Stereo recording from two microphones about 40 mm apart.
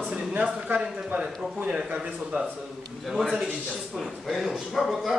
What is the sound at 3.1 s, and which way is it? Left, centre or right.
A man's voice, centre.